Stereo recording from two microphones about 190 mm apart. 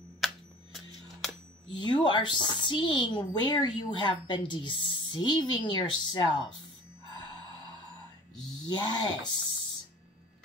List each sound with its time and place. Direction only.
1.7 s a woman's voice: 25° left (ahead or behind)
2.3 s a woman's voice: 30° right (ahead or behind)
2.6 s a woman's voice: 25° left (ahead or behind)
8.6 s a woman's voice: 25° left (ahead or behind)